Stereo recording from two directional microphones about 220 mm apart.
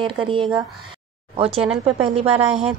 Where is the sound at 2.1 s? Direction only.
25° right (ahead or behind).